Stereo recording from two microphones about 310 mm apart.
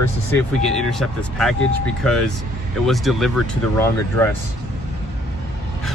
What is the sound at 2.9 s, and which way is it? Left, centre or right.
Speech, centre.